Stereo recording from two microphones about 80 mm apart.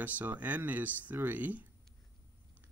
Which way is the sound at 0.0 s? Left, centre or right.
Right.